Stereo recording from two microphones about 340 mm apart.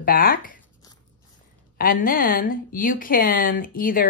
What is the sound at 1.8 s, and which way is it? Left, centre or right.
Speech, left.